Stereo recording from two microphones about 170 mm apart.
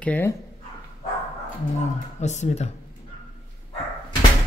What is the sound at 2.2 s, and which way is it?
Speech, 45° left (ahead or behind).